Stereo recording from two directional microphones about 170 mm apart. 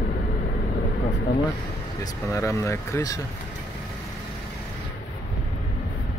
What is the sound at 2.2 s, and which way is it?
Speech, 15° left (ahead or behind).